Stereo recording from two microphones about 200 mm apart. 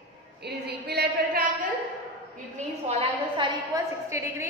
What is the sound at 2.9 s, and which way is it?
A woman's voice, 25° right (ahead or behind).